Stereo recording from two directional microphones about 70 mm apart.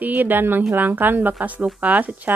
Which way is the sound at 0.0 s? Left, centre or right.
Right.